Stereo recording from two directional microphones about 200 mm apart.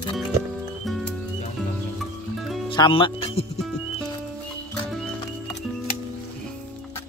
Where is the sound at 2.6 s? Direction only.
25° left (ahead or behind).